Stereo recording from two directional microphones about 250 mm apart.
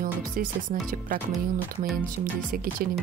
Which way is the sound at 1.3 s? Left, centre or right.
Centre.